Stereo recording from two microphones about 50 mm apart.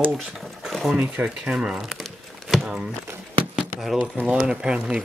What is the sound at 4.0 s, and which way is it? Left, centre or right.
Speech, right.